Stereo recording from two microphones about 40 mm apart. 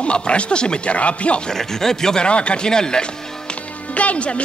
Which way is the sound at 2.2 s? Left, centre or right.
Left.